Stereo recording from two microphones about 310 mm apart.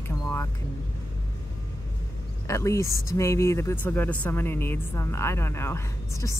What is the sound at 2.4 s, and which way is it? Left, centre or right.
Speech, centre.